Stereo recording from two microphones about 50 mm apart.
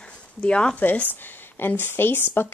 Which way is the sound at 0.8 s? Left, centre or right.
Left.